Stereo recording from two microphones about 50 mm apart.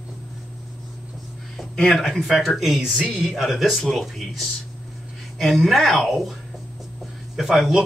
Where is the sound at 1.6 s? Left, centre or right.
Centre.